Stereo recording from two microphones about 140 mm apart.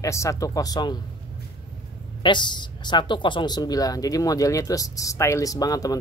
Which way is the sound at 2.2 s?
35° left (ahead or behind).